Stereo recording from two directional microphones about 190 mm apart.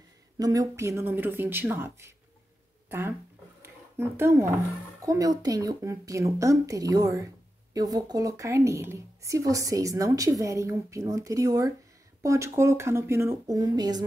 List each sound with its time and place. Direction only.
0.4 s a woman's voice: 20° right (ahead or behind)
3.6 s a sound: 10° right (ahead or behind)
5.0 s a woman's voice: 15° right (ahead or behind)